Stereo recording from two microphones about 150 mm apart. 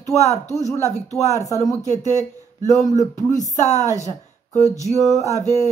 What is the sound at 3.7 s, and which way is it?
Speech, 20° right (ahead or behind).